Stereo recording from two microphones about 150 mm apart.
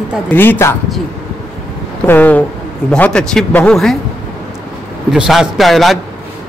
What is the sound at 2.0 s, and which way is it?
A man's voice, 10° left (ahead or behind).